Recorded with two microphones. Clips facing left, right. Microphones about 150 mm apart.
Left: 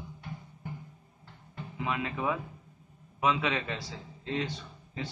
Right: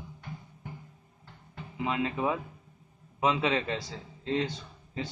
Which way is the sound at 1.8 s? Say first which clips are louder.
Right 3 dB; 25° right (ahead or behind).